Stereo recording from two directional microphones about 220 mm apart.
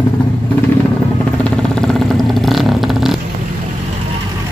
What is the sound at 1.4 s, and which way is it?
Vehicle, 5° left (ahead or behind).